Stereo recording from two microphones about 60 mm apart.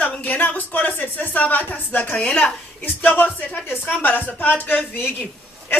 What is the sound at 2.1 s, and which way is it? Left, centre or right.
Speech, centre.